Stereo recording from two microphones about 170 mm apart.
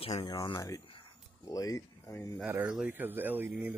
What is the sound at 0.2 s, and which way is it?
A man's voice, 30° left (ahead or behind).